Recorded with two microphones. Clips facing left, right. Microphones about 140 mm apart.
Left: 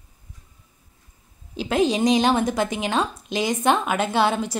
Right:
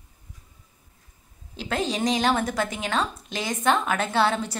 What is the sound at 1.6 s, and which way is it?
A woman's voice, 15° left (ahead or behind).